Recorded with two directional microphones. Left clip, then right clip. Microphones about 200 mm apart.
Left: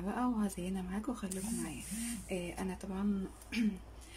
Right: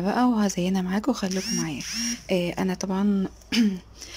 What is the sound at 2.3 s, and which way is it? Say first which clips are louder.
Speech: right 15 dB; 45° right (ahead or behind).